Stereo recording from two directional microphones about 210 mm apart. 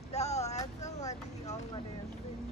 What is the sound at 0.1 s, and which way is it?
Vehicle, 30° left (ahead or behind).